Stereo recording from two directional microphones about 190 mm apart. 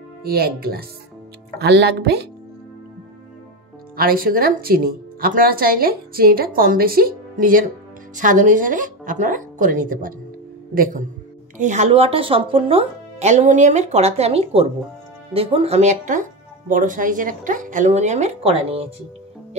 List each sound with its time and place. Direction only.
0.2 s speech: 55° right (ahead or behind)
3.9 s speech: 50° right (ahead or behind); by 18.9 s 30° right (ahead or behind)